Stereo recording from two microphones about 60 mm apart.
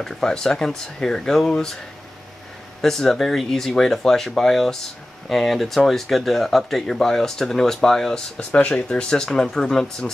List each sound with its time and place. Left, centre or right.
0.0 s speech: centre
2.8 s speech: centre
8.5 s speech: left
8.7 s speech: centre